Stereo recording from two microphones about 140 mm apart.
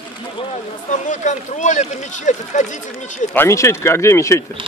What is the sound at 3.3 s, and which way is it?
Speech, 20° left (ahead or behind).